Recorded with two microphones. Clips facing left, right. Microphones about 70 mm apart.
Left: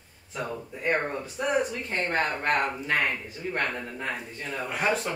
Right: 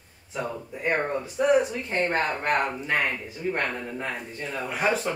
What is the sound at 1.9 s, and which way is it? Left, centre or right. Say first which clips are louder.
Speech: right 2 dB; centre.